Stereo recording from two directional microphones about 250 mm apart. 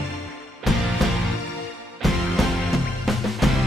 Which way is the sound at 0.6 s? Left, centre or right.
Centre.